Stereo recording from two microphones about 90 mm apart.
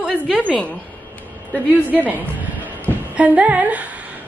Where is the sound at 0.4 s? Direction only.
10° left (ahead or behind).